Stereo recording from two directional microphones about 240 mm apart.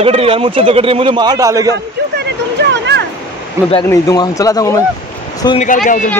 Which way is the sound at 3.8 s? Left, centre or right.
Centre.